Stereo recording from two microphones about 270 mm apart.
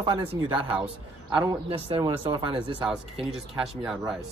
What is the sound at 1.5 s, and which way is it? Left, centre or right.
Speech, right.